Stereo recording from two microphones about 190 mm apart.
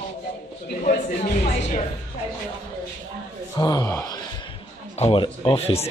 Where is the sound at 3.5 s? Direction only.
20° left (ahead or behind).